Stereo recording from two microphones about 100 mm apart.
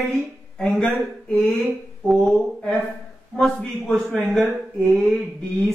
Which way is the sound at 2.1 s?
5° left (ahead or behind).